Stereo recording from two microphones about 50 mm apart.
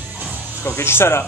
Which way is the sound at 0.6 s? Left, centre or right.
Left.